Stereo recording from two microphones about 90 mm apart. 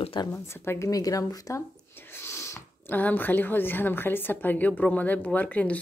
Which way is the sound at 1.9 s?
25° left (ahead or behind).